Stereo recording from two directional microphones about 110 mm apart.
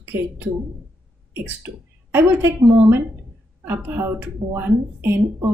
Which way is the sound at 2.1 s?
15° right (ahead or behind).